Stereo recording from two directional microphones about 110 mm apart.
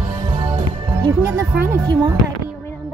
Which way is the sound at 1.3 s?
30° right (ahead or behind).